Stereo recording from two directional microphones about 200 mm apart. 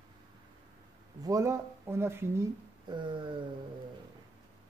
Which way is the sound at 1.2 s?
15° right (ahead or behind).